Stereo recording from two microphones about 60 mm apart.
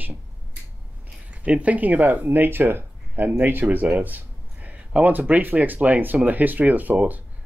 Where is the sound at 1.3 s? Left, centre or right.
Right.